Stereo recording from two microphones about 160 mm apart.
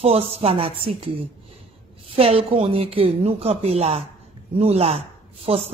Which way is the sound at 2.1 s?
35° right (ahead or behind).